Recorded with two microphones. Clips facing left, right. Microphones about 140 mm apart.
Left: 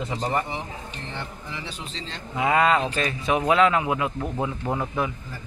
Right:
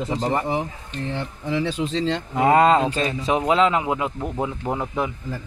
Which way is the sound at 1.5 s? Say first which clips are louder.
Right 13 dB; 90° right.